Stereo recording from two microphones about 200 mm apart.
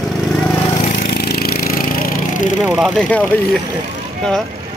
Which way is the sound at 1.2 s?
50° left (ahead or behind).